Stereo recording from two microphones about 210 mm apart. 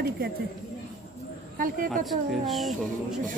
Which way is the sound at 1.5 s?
40° right (ahead or behind).